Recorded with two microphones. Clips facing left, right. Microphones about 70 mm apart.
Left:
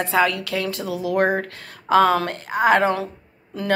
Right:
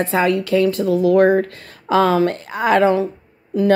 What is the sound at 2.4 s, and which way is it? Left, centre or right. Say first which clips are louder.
Speech: right 2 dB; left.